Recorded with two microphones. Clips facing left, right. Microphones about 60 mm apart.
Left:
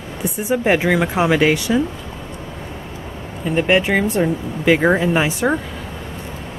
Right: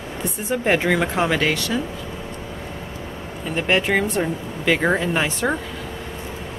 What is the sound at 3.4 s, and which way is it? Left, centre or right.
Speech, centre.